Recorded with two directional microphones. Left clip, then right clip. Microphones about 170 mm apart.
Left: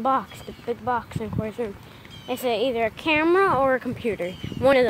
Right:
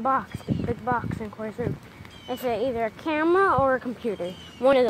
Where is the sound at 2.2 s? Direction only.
15° left (ahead or behind).